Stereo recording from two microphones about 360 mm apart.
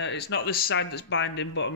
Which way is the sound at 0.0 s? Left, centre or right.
Left.